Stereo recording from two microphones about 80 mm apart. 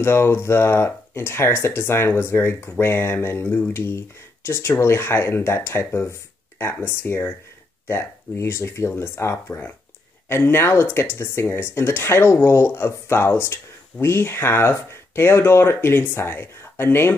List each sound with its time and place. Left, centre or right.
0.0 s speech: left